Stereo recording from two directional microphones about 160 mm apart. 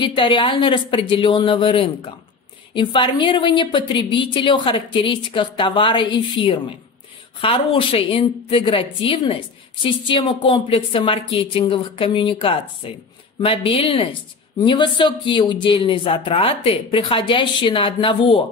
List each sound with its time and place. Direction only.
0.0 s a woman's voice: 30° left (ahead or behind)